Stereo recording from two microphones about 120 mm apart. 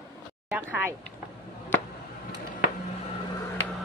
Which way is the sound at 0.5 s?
15° right (ahead or behind).